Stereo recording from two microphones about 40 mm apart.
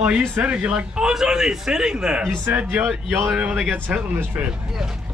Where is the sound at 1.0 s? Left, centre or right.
Centre.